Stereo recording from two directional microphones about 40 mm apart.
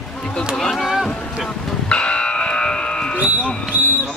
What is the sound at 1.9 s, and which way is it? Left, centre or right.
Buzzer, left.